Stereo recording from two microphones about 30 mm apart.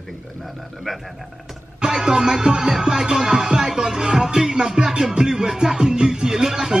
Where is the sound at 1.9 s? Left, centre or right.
Right.